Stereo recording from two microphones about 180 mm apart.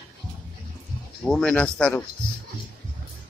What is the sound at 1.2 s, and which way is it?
Speech, 5° left (ahead or behind).